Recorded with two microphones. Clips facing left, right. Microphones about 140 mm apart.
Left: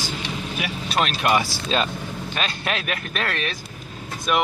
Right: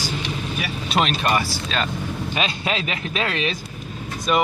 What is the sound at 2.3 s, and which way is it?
Speech, 5° right (ahead or behind).